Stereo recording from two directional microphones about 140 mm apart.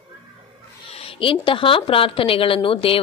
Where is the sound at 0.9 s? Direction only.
40° left (ahead or behind).